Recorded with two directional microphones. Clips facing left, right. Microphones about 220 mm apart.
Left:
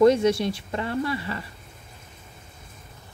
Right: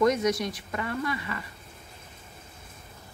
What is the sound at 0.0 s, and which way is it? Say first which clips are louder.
Speech: left 6 dB; 30° left (ahead or behind).